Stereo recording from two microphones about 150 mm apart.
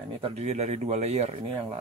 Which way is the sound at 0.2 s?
45° right (ahead or behind).